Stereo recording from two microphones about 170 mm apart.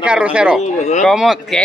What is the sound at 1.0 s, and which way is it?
Speech, centre (ahead or behind).